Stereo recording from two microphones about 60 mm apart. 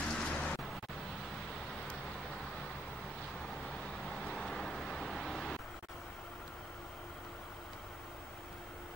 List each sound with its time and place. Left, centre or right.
0.0 s vehicle: centre
4.3 s vehicle: centre